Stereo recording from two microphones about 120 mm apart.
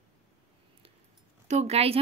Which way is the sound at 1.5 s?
65° right (ahead or behind).